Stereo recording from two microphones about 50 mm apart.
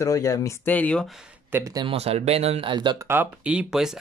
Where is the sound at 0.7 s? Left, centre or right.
Left.